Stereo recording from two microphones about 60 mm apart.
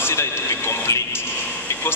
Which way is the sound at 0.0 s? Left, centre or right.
Left.